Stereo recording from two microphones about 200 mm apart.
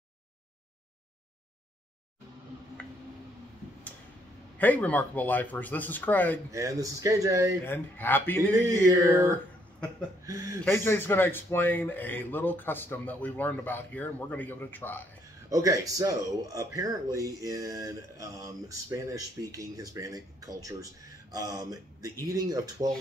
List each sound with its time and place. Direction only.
2.8 s a sound: 5° left (ahead or behind)
4.6 s a man's voice: 10° left (ahead or behind)
6.5 s speech: 15° right (ahead or behind)
7.6 s a man's voice: 10° left (ahead or behind)
8.6 s speech: 15° right (ahead or behind)
10.6 s a man's voice: 10° left (ahead or behind)
15.5 s speech: 15° right (ahead or behind)